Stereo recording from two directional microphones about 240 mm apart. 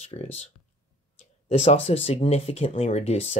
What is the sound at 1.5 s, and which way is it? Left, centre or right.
Speech, left.